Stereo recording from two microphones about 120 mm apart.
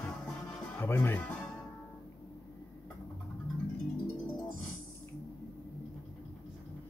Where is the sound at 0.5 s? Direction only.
15° left (ahead or behind).